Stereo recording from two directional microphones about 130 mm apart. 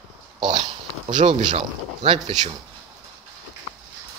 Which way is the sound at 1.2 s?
60° right (ahead or behind).